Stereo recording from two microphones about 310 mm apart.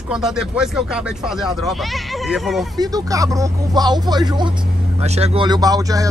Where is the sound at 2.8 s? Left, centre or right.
Centre.